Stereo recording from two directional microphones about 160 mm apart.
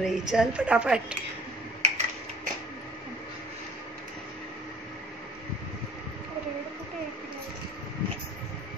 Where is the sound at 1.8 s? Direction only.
45° right (ahead or behind).